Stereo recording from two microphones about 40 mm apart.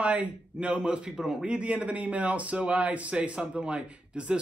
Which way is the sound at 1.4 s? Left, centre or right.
Right.